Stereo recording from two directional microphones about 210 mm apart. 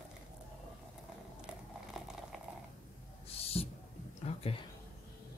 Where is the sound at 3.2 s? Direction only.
30° left (ahead or behind).